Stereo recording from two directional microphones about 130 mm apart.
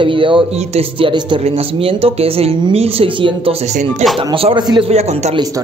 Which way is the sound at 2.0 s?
50° right (ahead or behind).